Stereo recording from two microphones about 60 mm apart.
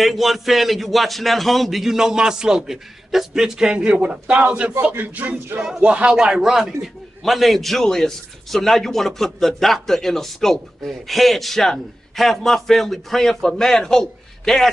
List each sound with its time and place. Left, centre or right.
0.0 s a man's voice: centre
4.9 s music: right
5.8 s a man's voice: centre